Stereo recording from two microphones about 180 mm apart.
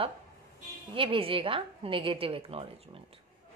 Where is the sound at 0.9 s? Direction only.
30° right (ahead or behind).